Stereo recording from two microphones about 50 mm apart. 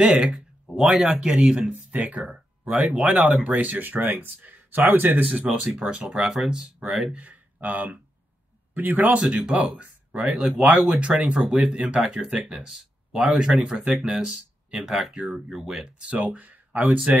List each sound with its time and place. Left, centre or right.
0.0 s speech: centre
1.1 s speech: right
5.5 s speech: right
7.2 s speech: right
9.2 s speech: right
12.5 s speech: centre
14.8 s speech: centre
15.8 s speech: right
16.2 s speech: right